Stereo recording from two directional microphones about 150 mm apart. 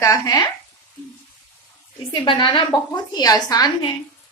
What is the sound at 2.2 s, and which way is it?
A woman's voice, 30° left (ahead or behind).